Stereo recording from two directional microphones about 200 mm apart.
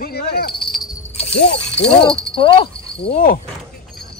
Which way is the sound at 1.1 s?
30° left (ahead or behind).